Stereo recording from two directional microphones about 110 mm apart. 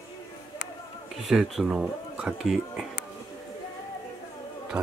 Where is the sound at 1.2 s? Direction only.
Centre (ahead or behind).